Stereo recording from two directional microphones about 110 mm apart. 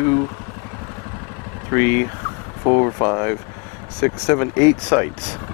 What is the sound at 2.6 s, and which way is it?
Speech, 30° left (ahead or behind).